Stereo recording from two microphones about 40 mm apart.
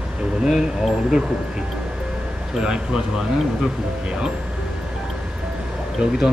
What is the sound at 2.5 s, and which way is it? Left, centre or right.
Speech, centre.